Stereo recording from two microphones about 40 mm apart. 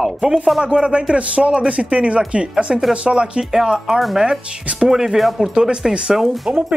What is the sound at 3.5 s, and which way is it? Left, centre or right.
Speech, centre.